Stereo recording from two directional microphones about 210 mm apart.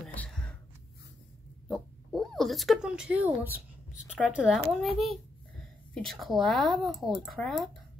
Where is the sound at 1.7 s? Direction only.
Centre (ahead or behind).